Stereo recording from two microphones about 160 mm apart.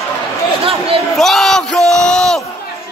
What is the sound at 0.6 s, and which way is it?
Speech, 35° right (ahead or behind).